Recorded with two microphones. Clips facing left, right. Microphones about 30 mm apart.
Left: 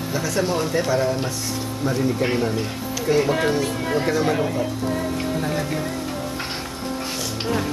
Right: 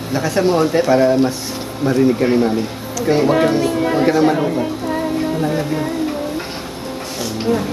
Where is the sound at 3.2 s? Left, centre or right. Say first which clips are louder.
Right 6 dB; centre.